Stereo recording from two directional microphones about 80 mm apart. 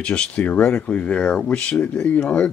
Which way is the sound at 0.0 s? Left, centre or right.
Centre.